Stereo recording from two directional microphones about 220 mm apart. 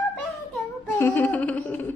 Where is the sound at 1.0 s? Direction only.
10° left (ahead or behind).